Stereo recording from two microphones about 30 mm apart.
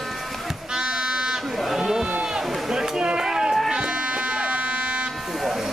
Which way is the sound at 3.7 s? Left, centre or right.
Right.